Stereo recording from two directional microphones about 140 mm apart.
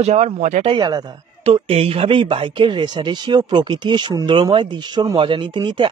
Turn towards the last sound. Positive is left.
turn(degrees=-35)  # may be behind; listen again after turning